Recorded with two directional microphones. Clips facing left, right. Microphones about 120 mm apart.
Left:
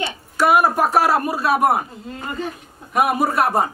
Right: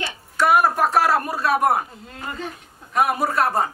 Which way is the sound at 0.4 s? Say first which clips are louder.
Left 2 dB; 10° left (ahead or behind).